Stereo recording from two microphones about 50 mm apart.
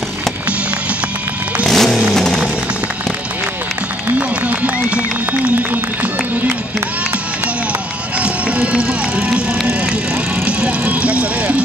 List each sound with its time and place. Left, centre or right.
1.7 s vehicle: centre
2.1 s music: centre
4.1 s run: right
8.2 s music: right
10.4 s vehicle: right